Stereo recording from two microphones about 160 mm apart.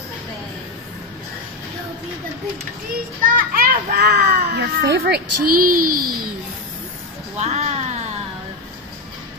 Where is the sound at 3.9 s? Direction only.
90° right.